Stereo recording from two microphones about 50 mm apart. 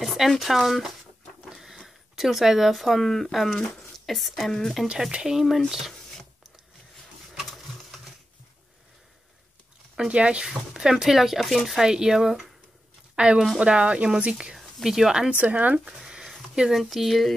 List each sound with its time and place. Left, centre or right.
0.0 s speech: centre
1.4 s printer: centre
1.8 s speech: centre
5.1 s speech: centre
5.4 s speech: centre
7.5 s a sound: centre
9.9 s speech: right; by 11.8 s centre
11.8 s speech: centre
13.1 s speech: right
15.3 s speech: right
16.1 s a sound: centre
16.7 s speech: centre